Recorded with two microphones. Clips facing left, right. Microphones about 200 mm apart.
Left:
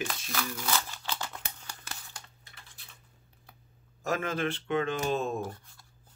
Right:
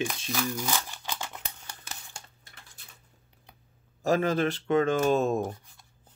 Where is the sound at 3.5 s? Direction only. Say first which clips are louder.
Right 1 dB; 20° right (ahead or behind).